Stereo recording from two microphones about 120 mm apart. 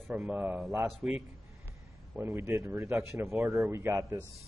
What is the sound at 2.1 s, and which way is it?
Speech, 20° right (ahead or behind).